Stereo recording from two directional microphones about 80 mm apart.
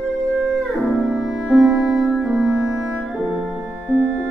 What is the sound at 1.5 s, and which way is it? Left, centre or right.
Music, centre.